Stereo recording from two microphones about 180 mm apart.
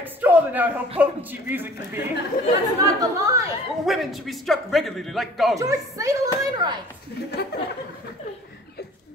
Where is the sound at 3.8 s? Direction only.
Centre (ahead or behind).